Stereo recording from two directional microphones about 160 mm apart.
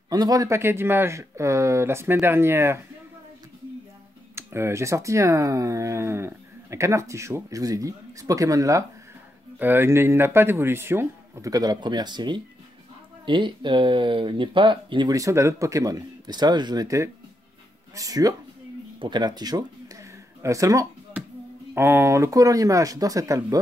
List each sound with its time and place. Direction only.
0.1 s speech: 20° right (ahead or behind)
4.4 s speech: 15° right (ahead or behind)